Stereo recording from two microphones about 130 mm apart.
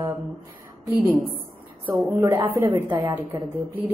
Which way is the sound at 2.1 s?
20° right (ahead or behind).